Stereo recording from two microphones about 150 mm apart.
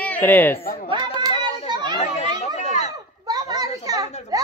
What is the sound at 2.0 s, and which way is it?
Chatter, 45° left (ahead or behind).